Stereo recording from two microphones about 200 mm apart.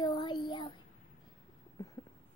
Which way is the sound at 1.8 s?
20° left (ahead or behind).